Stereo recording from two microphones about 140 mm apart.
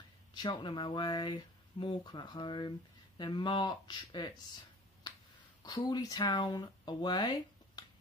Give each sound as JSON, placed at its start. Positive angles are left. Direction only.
{"t": 0.3, "sound": "speech", "side_deg": 30}
{"t": 5.6, "sound": "speech", "side_deg": 30}